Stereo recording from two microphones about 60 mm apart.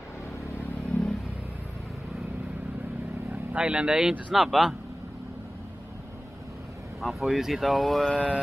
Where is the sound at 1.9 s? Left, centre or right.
Centre.